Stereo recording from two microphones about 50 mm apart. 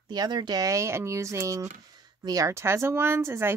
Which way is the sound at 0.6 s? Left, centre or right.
Right.